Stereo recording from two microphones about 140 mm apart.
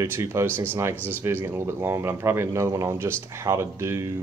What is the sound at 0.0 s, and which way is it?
Speech, 20° right (ahead or behind).